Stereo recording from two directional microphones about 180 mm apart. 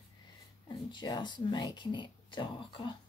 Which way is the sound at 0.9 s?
25° left (ahead or behind).